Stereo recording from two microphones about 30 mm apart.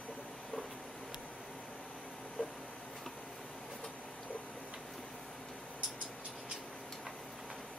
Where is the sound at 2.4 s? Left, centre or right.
Left.